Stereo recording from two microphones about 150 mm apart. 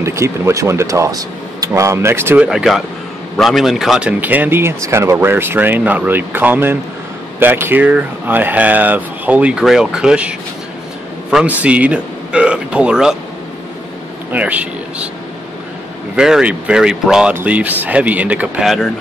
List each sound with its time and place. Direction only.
0.0 s speech: 20° right (ahead or behind)
14.3 s speech: 10° right (ahead or behind)
16.2 s speech: 5° right (ahead or behind)